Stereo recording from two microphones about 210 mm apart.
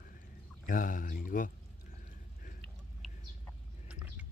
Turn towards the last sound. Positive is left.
turn(degrees=0)  # may be behind; listen again after turning